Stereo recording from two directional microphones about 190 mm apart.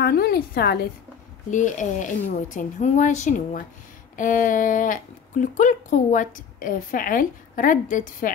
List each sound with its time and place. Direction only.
0.0 s a woman's voice: 55° left (ahead or behind)
1.5 s speech: 40° left (ahead or behind)